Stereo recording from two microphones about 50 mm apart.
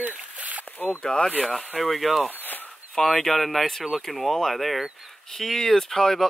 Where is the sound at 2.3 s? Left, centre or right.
Left.